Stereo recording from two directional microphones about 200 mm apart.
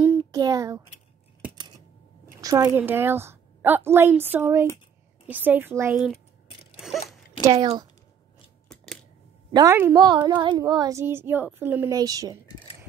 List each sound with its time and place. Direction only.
0.2 s a child's voice: 20° right (ahead or behind)
2.4 s speech: 15° right (ahead or behind)
6.8 s a sound: centre (ahead or behind)
7.4 s speech: 20° right (ahead or behind)
8.6 s scissors: 5° left (ahead or behind)
9.5 s a woman's voice: 20° right (ahead or behind)